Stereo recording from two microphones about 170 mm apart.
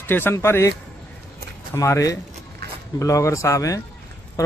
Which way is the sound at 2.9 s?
20° left (ahead or behind).